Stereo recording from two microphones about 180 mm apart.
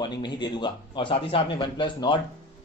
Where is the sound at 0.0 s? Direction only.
25° left (ahead or behind).